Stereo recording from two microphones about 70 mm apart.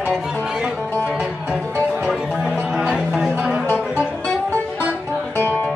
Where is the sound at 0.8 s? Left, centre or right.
Left.